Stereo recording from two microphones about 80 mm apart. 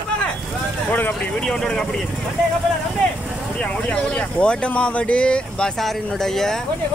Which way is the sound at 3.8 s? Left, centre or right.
Centre.